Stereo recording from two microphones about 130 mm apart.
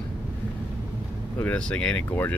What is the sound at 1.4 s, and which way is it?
Speech, 10° left (ahead or behind).